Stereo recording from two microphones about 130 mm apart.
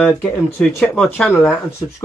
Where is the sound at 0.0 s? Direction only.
15° left (ahead or behind).